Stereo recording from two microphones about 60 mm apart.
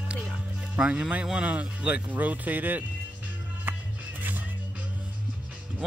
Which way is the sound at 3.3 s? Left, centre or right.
Right.